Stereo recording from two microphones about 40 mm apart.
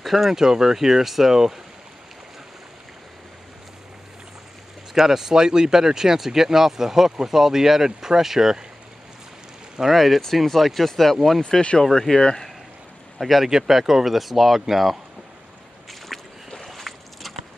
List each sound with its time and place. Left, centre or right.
0.0 s speech: centre
4.9 s speech: centre
9.8 s speech: centre
12.2 s speech: left
13.2 s speech: centre
13.5 s speech: centre
16.1 s a sound: centre